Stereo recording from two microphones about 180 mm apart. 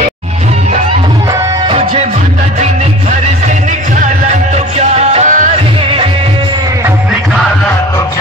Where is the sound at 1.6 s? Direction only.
35° right (ahead or behind).